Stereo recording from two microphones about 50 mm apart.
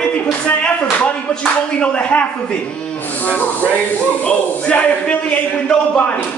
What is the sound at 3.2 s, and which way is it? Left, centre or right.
Speech, left.